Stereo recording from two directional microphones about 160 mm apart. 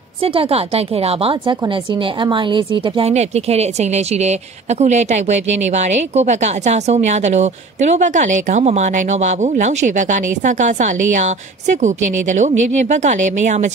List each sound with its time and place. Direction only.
0.2 s a woman's voice: 35° right (ahead or behind)
3.1 s speech: 40° right (ahead or behind)